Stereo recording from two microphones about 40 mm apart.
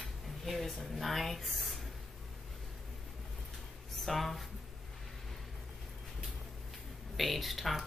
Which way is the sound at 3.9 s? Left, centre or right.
Centre.